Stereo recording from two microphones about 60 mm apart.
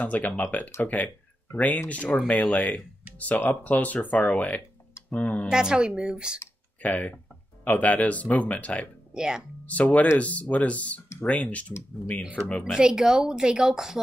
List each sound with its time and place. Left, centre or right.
0.0 s speech: left
5.5 s speech: centre
6.8 s speech: left
9.1 s speech: centre
9.7 s speech: left
12.7 s speech: centre